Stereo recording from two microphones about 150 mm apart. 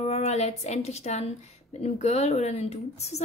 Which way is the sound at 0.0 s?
45° left (ahead or behind).